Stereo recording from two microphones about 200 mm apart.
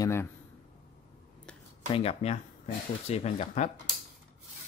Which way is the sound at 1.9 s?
30° left (ahead or behind).